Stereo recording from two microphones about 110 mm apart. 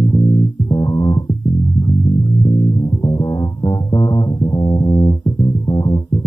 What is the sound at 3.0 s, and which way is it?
Music, 40° left (ahead or behind).